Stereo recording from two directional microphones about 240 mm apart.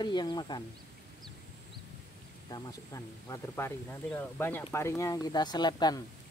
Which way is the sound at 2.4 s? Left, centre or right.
Centre.